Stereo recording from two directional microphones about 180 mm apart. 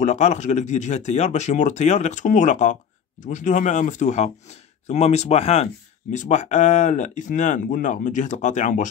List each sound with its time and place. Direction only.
0.0 s speech: 40° left (ahead or behind)